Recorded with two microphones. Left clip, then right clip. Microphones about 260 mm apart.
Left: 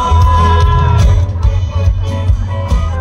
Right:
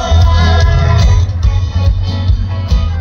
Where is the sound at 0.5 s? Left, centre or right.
Centre.